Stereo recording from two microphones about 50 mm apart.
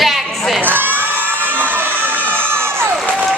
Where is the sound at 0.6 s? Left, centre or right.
Right.